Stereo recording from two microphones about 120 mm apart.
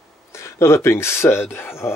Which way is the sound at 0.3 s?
25° left (ahead or behind).